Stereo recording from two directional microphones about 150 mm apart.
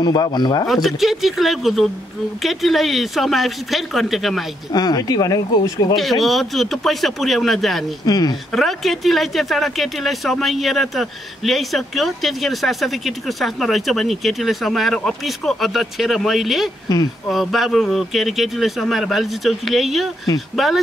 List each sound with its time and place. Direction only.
0.0 s speech: 30° left (ahead or behind)
0.8 s speech: centre (ahead or behind)
4.7 s speech: 25° left (ahead or behind)
5.9 s speech: centre (ahead or behind)
8.0 s speech: 25° left (ahead or behind)
8.5 s speech: centre (ahead or behind)